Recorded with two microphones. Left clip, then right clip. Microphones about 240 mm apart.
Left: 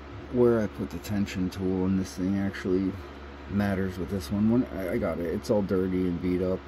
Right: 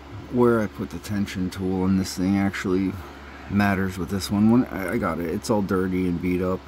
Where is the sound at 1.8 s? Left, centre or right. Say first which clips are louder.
Right 5 dB; right.